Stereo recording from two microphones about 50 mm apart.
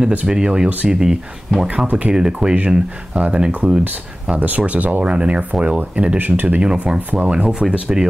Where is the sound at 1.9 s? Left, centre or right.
Right.